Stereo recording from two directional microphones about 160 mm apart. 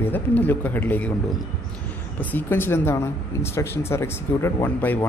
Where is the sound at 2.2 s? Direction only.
10° left (ahead or behind).